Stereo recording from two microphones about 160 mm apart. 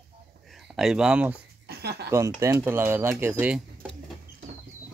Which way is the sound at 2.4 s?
15° right (ahead or behind).